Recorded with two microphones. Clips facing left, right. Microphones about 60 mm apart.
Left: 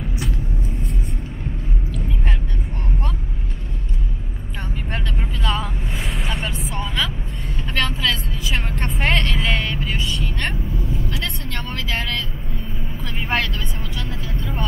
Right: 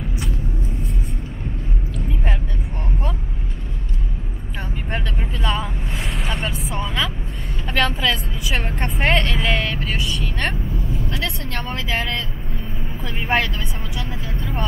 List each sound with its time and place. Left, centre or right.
4.9 s vehicle: centre
8.5 s music: right
8.8 s vehicle: centre
11.6 s vehicle: centre